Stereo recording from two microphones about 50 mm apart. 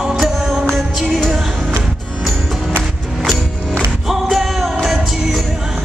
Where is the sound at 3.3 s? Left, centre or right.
Right.